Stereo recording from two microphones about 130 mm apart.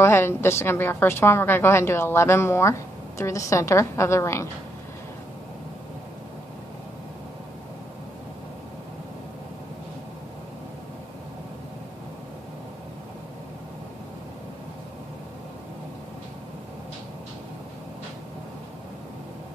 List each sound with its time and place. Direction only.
0.0 s a woman's voice: 20° left (ahead or behind)